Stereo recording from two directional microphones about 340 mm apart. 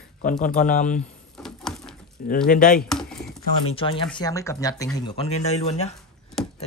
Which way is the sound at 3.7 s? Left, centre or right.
Centre.